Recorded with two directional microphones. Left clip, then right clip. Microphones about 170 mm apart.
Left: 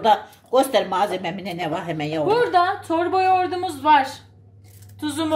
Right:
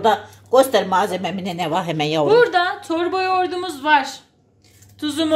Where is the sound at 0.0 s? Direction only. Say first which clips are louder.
Even; 25° right (ahead or behind); by 2.2 s 55° right (ahead or behind).